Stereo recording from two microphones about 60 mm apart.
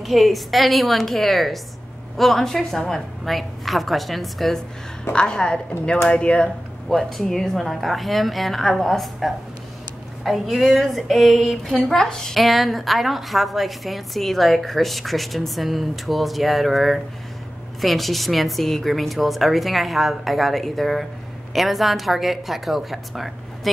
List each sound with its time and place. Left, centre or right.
0.0 s speech: centre
5.1 s a woman's voice: centre